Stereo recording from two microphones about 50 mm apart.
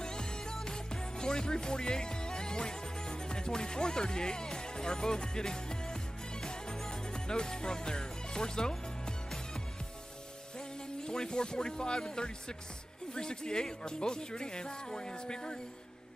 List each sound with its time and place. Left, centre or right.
0.0 s music: centre
11.0 s speech: centre